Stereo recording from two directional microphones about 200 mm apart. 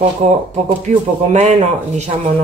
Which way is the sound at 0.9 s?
35° right (ahead or behind).